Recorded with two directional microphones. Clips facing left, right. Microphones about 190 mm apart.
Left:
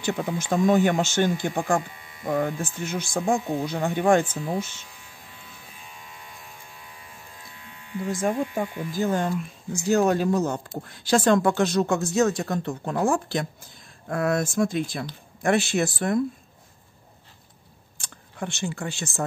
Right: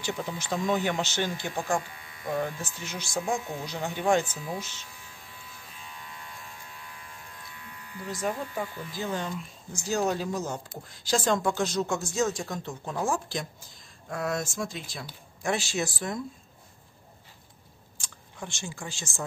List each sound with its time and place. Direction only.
0.0 s speech: 55° left (ahead or behind)
7.7 s electric shaver: 25° left (ahead or behind)
8.1 s a woman's voice: 50° left (ahead or behind)
17.9 s speech: 60° left (ahead or behind)